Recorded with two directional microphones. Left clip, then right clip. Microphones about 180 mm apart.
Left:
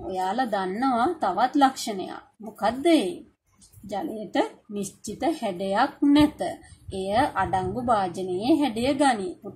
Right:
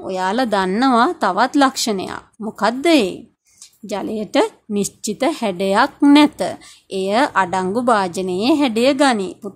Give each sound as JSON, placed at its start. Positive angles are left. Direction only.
{"t": 0.1, "sound": "speech", "side_deg": -40}